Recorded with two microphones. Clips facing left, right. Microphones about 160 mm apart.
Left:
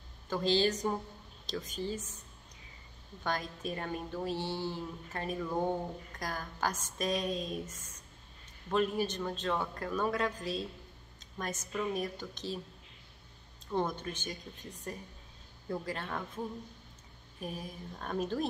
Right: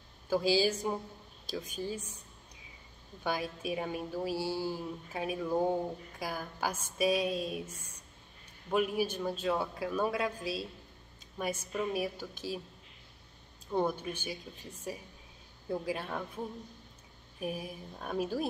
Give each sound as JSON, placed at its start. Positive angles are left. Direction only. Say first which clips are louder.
{"t": 0.3, "sound": "a woman's voice", "louder": "right 1 dB", "side_deg": -10}
{"t": 3.3, "sound": "a woman's voice", "louder": "right 2 dB", "side_deg": -10}
{"t": 13.7, "sound": "a woman's voice", "louder": "right 2 dB", "side_deg": -10}
{"t": 15.7, "sound": "a woman's voice", "louder": "right 2 dB", "side_deg": -10}
{"t": 17.4, "sound": "a woman's voice", "louder": "right 3 dB", "side_deg": -10}